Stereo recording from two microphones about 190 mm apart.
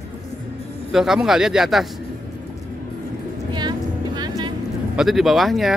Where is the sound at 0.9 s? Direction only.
Centre (ahead or behind).